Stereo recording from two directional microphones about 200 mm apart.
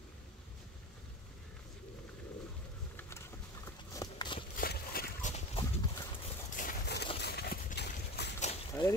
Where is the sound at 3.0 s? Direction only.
15° left (ahead or behind).